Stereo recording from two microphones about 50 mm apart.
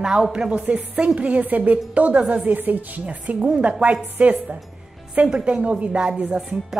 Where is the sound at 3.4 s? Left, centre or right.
Right.